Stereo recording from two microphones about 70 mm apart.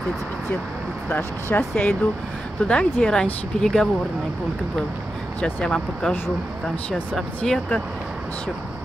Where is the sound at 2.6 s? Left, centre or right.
Centre.